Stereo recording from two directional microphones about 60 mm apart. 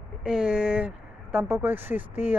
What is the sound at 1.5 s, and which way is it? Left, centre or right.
Speech, right.